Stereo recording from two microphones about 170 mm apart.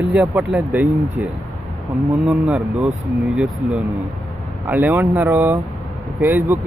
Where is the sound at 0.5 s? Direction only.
Centre (ahead or behind).